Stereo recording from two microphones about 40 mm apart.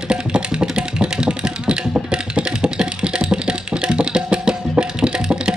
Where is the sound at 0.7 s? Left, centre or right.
Right.